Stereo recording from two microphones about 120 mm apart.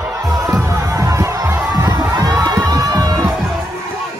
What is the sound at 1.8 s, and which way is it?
Crowd, 30° right (ahead or behind).